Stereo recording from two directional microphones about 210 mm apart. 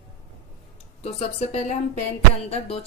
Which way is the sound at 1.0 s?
30° left (ahead or behind).